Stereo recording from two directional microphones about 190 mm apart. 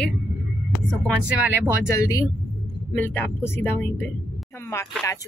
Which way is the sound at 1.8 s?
15° left (ahead or behind).